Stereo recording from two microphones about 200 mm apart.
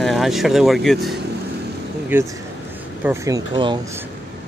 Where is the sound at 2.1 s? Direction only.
10° right (ahead or behind).